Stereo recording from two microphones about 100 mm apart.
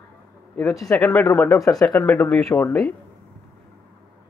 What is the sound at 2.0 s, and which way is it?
Speech, 20° left (ahead or behind).